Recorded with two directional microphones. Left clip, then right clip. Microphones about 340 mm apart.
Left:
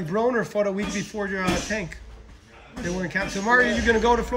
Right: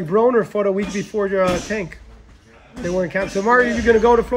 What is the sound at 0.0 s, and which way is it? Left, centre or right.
Speech, centre.